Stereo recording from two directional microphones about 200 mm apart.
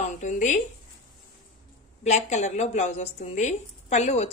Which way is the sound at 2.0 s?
35° left (ahead or behind).